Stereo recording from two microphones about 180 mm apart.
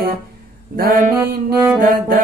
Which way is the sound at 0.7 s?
55° right (ahead or behind).